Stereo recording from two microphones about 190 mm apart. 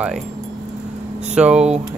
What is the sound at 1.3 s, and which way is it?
Speech, 5° right (ahead or behind).